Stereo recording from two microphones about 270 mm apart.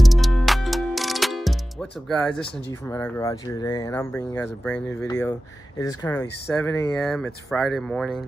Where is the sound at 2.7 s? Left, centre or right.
Centre.